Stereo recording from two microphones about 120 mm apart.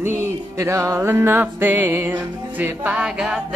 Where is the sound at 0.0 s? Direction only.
20° right (ahead or behind).